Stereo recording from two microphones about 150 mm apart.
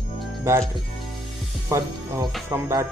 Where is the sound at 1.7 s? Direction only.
20° right (ahead or behind).